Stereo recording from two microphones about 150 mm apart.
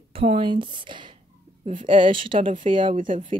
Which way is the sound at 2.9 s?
60° right (ahead or behind).